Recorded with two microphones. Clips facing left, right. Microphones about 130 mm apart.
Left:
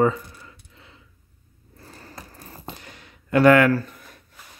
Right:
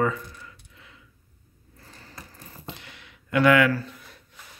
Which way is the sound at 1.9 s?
45° left (ahead or behind).